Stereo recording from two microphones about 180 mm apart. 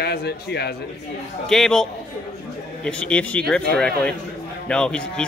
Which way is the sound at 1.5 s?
5° left (ahead or behind).